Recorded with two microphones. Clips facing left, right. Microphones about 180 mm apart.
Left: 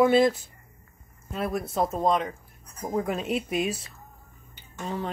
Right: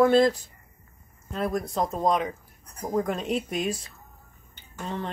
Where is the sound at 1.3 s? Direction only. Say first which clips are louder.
Even; 5° left (ahead or behind).